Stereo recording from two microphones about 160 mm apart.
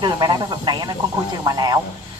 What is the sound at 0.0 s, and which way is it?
Speech, 25° right (ahead or behind).